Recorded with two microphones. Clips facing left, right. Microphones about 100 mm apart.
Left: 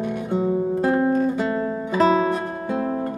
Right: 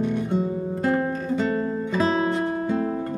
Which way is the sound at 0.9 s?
15° left (ahead or behind).